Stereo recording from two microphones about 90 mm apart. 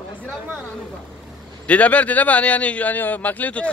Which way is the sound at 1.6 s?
15° left (ahead or behind).